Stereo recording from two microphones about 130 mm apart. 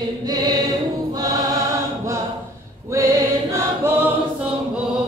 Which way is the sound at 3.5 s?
15° right (ahead or behind).